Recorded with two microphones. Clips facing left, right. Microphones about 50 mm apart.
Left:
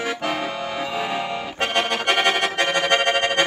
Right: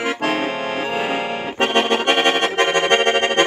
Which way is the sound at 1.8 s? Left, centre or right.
Right.